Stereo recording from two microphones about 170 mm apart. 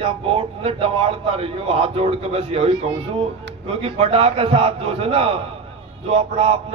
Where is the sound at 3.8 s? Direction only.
35° right (ahead or behind).